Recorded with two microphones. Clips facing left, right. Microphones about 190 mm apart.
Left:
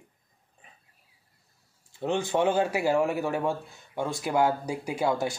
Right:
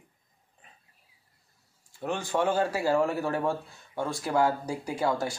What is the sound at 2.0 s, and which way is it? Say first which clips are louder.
Speech: left 3 dB; 25° left (ahead or behind).